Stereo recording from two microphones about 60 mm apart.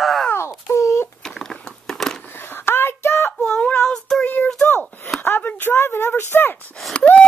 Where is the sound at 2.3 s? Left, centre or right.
Left.